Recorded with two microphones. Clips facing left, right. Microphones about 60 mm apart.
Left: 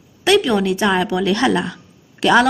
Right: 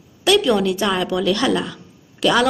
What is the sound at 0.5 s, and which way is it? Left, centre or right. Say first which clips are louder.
A woman's voice: left 1 dB; left.